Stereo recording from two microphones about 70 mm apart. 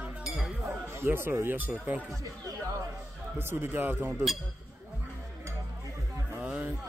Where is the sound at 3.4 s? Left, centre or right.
Right.